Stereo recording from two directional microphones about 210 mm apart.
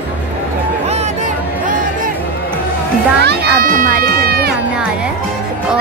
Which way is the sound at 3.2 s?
50° right (ahead or behind).